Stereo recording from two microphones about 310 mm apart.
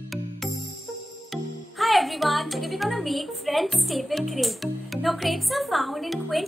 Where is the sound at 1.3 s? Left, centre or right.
Centre.